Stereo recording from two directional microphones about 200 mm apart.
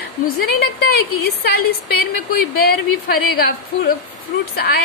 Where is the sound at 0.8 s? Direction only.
50° left (ahead or behind).